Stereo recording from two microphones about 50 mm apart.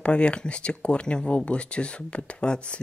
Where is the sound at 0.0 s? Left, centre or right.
Left.